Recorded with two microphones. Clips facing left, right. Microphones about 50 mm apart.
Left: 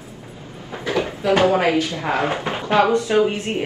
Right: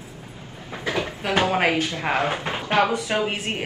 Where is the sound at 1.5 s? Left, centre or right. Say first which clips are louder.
Left 3 dB; right.